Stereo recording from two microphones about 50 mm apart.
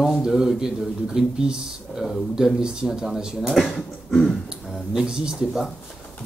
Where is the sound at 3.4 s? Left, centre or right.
Centre.